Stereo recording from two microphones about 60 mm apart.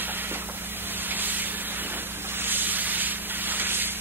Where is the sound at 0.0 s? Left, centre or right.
Right.